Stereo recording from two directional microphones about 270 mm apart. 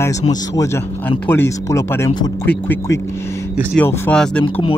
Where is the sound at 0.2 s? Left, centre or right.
Centre.